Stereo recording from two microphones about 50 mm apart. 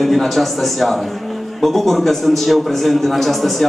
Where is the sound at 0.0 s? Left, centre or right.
Centre.